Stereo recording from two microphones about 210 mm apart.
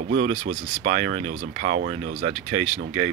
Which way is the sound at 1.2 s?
65° right (ahead or behind).